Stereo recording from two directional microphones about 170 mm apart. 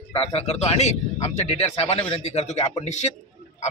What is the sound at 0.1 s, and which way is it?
A man's voice, 35° left (ahead or behind).